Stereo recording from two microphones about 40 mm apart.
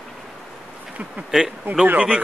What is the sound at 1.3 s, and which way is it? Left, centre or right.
Speech, centre.